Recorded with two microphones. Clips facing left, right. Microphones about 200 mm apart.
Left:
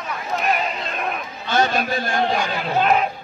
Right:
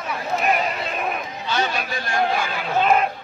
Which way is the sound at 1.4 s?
50° left (ahead or behind).